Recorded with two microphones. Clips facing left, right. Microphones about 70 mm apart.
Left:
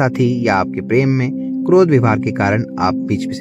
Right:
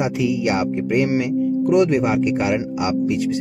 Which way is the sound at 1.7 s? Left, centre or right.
Left.